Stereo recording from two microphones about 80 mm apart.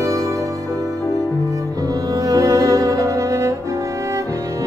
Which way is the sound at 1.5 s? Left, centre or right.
Right.